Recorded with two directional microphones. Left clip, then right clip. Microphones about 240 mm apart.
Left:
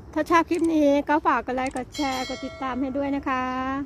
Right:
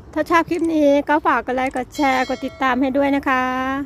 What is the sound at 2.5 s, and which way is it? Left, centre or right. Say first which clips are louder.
Speech: right 11 dB; centre.